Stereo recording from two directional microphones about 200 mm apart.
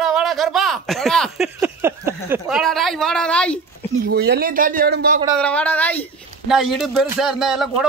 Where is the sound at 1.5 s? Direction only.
15° right (ahead or behind).